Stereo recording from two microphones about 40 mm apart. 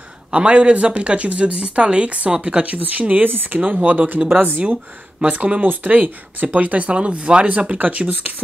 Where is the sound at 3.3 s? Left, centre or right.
Right.